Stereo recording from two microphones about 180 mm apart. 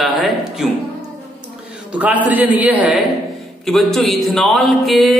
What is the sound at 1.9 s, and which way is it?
A man's voice, 10° right (ahead or behind).